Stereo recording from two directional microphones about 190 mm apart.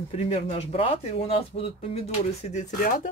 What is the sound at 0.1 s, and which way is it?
Speech, 35° left (ahead or behind).